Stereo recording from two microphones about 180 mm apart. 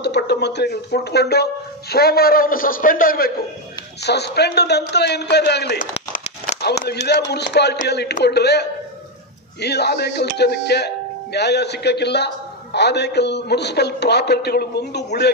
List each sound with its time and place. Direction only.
0.0 s speech: 70° left (ahead or behind)
4.0 s a man's voice: 65° left (ahead or behind)
6.1 s a man's voice: 50° left (ahead or behind); by 15.3 s 65° left (ahead or behind)